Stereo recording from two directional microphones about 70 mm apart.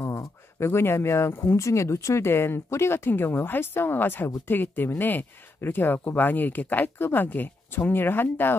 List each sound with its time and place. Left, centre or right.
0.0 s speech: left